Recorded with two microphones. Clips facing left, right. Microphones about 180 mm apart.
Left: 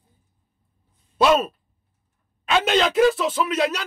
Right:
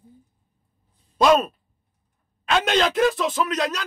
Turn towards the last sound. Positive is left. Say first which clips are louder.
# left 2 dB
turn(degrees=5)  # may be behind; listen again after turning